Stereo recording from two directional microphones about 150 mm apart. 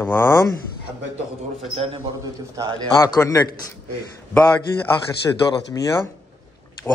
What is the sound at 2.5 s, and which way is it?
Speech, 25° right (ahead or behind).